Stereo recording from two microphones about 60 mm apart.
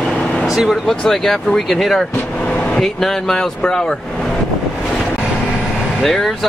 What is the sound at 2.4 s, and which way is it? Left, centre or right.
Vehicle, left.